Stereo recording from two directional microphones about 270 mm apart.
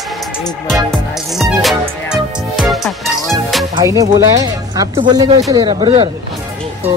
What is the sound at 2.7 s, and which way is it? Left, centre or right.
Music, centre.